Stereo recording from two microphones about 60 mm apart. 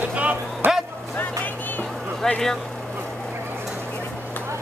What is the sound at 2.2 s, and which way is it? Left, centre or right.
Speech, centre.